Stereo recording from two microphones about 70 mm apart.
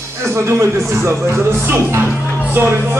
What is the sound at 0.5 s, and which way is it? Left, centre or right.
Speech, right.